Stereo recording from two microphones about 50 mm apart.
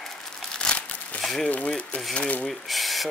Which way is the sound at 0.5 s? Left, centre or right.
Centre.